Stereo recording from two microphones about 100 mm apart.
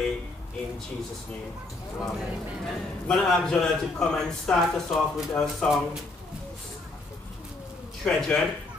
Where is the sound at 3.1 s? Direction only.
5° left (ahead or behind).